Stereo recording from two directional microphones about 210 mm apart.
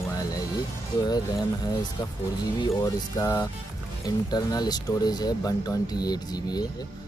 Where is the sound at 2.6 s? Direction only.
20° left (ahead or behind).